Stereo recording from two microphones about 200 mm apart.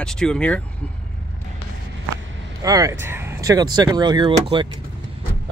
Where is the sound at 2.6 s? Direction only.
15° right (ahead or behind).